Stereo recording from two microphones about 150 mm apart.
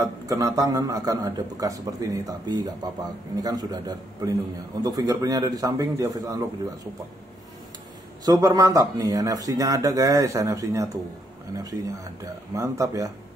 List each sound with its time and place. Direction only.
0.0 s a man's voice: 20° right (ahead or behind)
8.3 s a man's voice: 25° right (ahead or behind)